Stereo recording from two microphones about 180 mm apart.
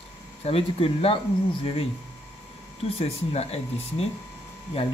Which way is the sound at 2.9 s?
35° left (ahead or behind).